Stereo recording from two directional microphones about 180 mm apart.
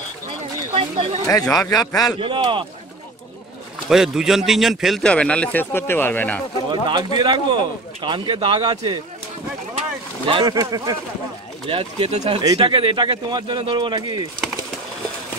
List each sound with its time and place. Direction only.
0.7 s speech: 35° right (ahead or behind)
1.6 s a man's voice: 20° left (ahead or behind)
2.1 s speech: 25° right (ahead or behind)
3.9 s a man's voice: 5° right (ahead or behind)
6.7 s speech: 25° right (ahead or behind)
11.7 s speech: 35° right (ahead or behind)